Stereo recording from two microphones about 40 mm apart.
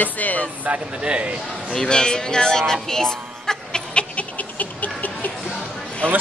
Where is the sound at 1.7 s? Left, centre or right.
Centre.